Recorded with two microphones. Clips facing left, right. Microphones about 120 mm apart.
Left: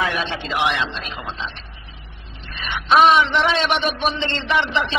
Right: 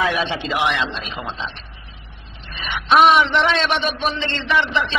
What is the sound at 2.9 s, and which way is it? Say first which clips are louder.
Speech: right 1 dB; centre (ahead or behind).